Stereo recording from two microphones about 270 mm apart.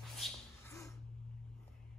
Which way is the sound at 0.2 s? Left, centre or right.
Centre.